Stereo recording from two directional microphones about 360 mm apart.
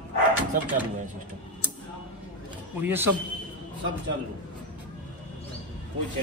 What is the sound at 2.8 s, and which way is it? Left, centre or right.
Speech, centre.